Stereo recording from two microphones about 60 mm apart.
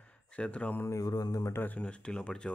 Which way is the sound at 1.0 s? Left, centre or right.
Left.